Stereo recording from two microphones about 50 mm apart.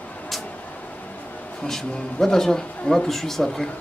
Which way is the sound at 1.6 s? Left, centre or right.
Centre.